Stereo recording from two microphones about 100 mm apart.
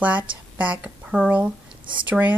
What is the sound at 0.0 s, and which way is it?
A woman's voice, 15° right (ahead or behind).